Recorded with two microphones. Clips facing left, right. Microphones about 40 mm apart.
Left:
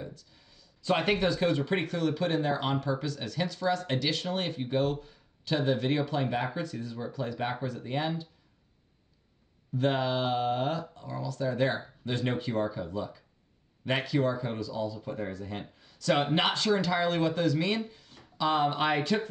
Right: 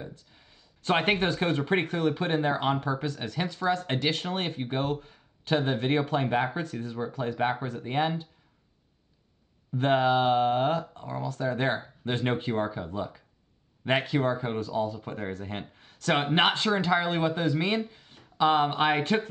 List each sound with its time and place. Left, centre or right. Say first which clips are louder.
0.0 s a sound: even; right
0.8 s speech: right 2 dB; right
9.8 s speech: right 5 dB; right